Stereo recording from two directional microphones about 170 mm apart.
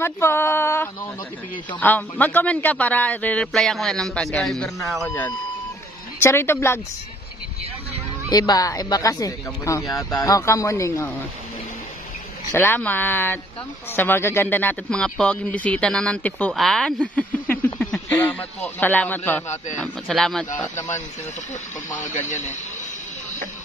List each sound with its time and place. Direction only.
0.0 s speech: 15° left (ahead or behind)
6.2 s speech: 15° left (ahead or behind)
8.3 s speech: 20° left (ahead or behind)
12.5 s speech: 10° left (ahead or behind)
21.9 s speech: 45° left (ahead or behind)